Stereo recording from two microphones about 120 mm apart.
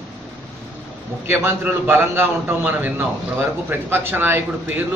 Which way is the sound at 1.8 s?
20° right (ahead or behind).